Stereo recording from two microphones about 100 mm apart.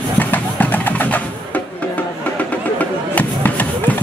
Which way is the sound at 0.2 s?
15° left (ahead or behind).